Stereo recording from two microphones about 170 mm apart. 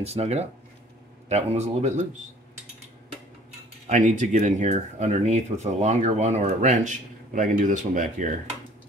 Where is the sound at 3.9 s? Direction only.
50° right (ahead or behind).